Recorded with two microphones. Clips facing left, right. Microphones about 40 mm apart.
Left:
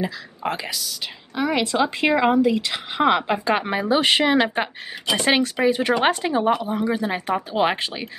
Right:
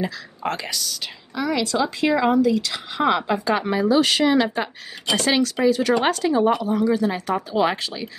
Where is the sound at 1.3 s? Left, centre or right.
Left.